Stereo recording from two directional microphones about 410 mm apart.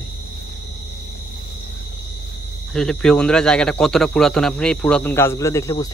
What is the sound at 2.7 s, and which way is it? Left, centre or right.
Speech, centre.